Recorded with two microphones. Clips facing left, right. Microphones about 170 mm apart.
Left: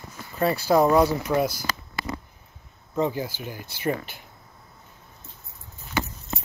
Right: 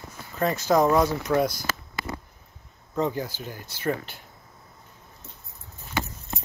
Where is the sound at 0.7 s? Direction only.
15° left (ahead or behind).